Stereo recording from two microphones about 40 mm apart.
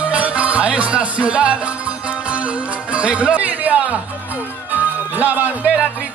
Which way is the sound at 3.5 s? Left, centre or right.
Right.